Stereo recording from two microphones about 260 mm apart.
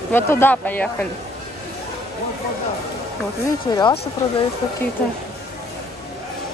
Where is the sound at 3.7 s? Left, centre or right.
Centre.